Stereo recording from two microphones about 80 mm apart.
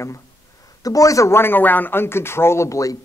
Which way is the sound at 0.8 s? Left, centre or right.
Left.